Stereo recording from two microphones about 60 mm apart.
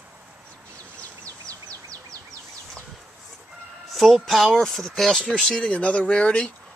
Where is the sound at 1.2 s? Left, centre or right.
Right.